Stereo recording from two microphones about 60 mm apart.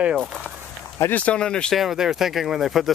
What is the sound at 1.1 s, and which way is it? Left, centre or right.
Speech, left.